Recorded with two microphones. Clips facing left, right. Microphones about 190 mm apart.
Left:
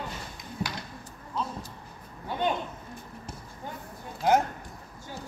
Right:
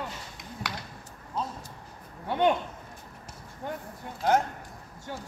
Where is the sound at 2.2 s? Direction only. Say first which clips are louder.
Right 5 dB; 65° right (ahead or behind).